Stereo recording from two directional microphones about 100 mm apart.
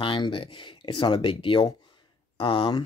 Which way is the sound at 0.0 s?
60° left (ahead or behind).